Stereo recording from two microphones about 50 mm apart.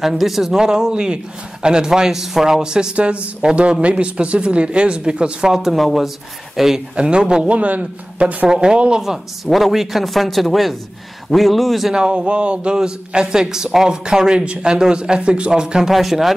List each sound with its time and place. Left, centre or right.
0.0 s a man's voice: centre
3.0 s speech: right; by 6.8 s centre
7.0 s speech: centre
8.5 s a man's voice: centre
9.0 s speech: centre
11.9 s a man's voice: centre
15.9 s speech: centre